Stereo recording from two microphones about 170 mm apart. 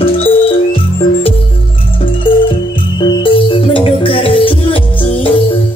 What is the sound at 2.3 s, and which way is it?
Music, 30° left (ahead or behind).